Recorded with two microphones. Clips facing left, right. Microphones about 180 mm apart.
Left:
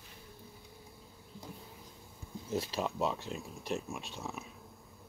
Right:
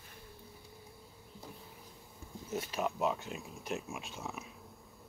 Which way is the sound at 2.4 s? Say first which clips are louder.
Left 1 dB; 30° left (ahead or behind).